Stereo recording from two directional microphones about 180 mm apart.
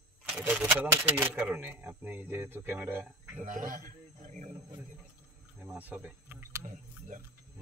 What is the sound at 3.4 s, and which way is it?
A man's voice, 45° right (ahead or behind).